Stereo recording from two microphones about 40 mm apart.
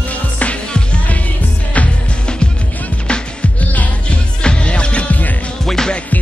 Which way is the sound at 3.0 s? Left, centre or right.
Left.